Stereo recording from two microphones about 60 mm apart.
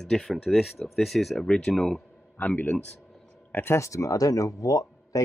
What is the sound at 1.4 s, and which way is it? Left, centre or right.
Speech, centre.